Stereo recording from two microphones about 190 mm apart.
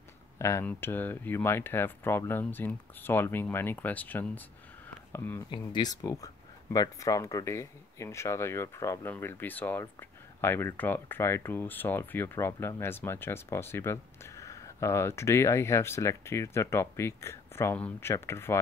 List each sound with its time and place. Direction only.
0.4 s speech: 15° left (ahead or behind)
5.5 s speech: 25° left (ahead or behind)